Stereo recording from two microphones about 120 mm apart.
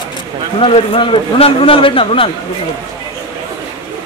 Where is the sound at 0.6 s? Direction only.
50° left (ahead or behind).